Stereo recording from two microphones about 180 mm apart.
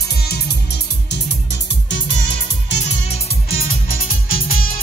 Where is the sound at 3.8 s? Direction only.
55° left (ahead or behind).